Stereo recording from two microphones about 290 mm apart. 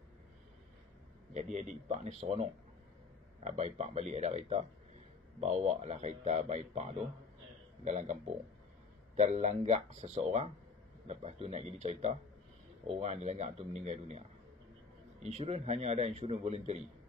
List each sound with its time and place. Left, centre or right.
1.3 s a man's voice: right
5.4 s a man's voice: right
15.2 s a man's voice: right